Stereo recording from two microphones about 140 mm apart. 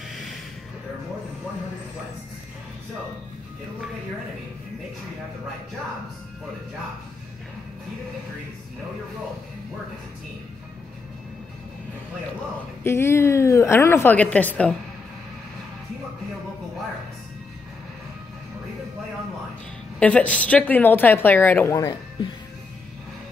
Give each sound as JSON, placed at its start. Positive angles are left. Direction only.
{"t": 12.8, "sound": "a woman's voice", "side_deg": 15}
{"t": 20.0, "sound": "a woman's voice", "side_deg": 10}